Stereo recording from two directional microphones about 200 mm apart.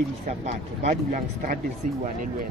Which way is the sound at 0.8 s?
45° right (ahead or behind).